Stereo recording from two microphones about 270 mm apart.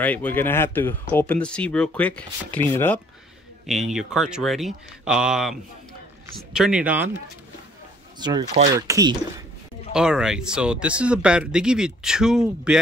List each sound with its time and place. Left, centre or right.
0.0 s speech: centre
8.2 s speech: centre